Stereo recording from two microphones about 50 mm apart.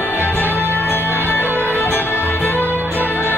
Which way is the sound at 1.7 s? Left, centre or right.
Left.